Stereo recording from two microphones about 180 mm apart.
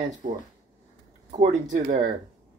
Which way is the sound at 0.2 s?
40° right (ahead or behind).